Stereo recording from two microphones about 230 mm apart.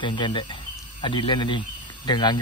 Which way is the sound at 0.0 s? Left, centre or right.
Left.